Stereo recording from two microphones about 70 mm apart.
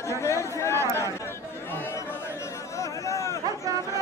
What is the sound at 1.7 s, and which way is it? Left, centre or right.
Chatter, left.